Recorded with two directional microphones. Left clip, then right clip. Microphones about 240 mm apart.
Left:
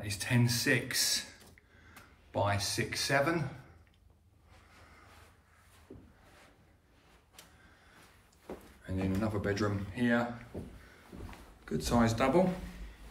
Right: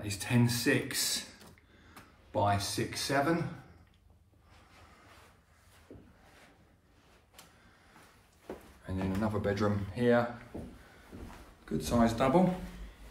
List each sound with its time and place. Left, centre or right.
0.0 s speech: centre
2.3 s speech: centre
8.8 s speech: centre
11.6 s speech: centre